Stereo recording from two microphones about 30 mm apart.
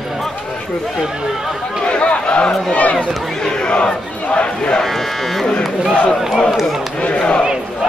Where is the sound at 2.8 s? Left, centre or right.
Left.